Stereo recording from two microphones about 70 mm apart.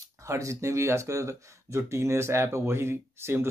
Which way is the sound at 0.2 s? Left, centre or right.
Right.